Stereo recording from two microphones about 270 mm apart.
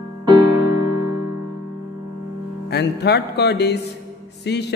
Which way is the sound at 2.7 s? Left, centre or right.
Left.